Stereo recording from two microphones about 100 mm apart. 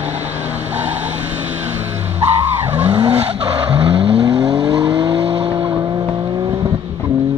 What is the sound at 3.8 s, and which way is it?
Vehicle, 65° right (ahead or behind).